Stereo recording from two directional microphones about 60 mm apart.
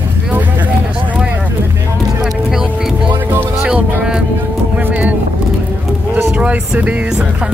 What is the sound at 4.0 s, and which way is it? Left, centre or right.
Music, centre.